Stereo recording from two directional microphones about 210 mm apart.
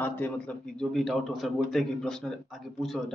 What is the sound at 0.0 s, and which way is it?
A man's voice, 10° left (ahead or behind).